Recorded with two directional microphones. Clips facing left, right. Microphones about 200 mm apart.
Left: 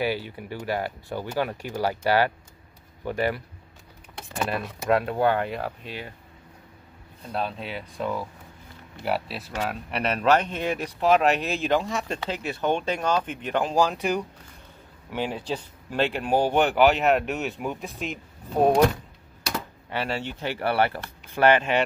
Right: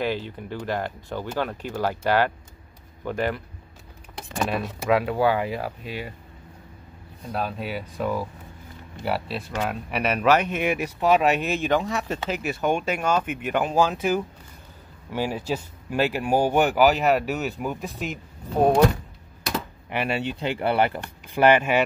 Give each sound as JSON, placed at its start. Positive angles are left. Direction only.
{"t": 0.0, "sound": "speech", "side_deg": 10}
{"t": 4.5, "sound": "speech", "side_deg": 0}
{"t": 7.4, "sound": "speech", "side_deg": -5}
{"t": 19.5, "sound": "speech", "side_deg": -15}